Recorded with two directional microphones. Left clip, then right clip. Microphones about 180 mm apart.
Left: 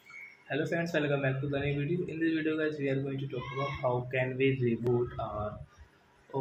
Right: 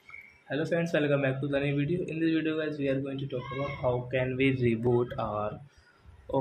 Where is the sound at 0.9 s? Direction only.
35° right (ahead or behind).